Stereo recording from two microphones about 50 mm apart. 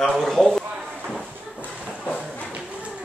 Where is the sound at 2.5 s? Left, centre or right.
Right.